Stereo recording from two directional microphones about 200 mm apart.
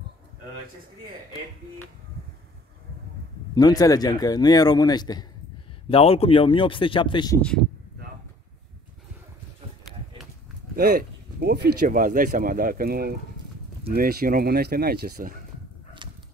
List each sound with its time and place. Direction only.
3.5 s speech: 20° left (ahead or behind)
7.3 s speech: 5° left (ahead or behind)
10.8 s speech: 50° right (ahead or behind)
13.4 s clip-clop: 20° right (ahead or behind)
13.8 s speech: 50° right (ahead or behind)